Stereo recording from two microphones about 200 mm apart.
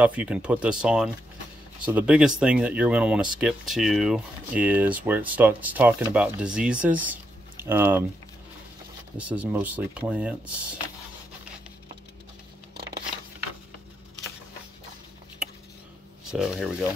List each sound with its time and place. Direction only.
0.0 s speech: 5° right (ahead or behind)
9.1 s speech: 5° right (ahead or behind)
16.3 s speech: 5° right (ahead or behind)